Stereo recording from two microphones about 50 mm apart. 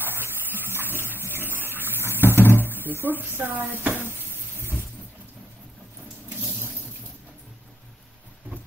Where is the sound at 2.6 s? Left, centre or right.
Right.